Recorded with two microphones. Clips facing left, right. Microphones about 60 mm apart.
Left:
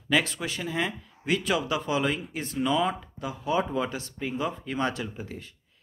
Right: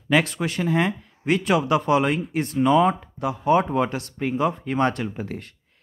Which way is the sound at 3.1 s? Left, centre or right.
Right.